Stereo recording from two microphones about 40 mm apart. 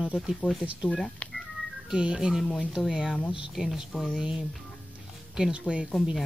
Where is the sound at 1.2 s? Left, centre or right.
Left.